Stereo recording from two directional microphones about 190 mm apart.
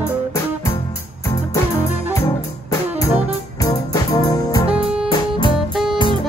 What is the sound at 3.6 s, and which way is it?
Music, 20° left (ahead or behind).